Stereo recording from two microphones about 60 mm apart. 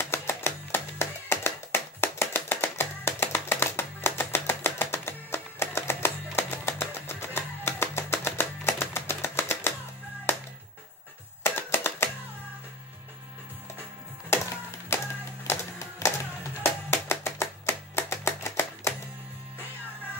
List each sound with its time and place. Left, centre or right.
0.0 s music: left
11.4 s typewriter: left
14.3 s a sound: left
15.4 s music: left